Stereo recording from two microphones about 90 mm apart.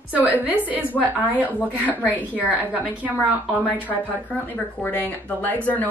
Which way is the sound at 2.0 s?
20° left (ahead or behind).